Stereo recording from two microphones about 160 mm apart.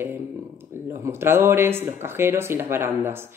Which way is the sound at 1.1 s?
15° right (ahead or behind).